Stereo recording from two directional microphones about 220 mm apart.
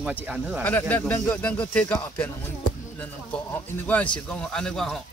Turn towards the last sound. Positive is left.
turn(degrees=0)  # may be behind; listen again after turning